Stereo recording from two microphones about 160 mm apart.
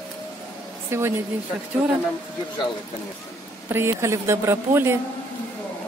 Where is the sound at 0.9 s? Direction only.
15° right (ahead or behind).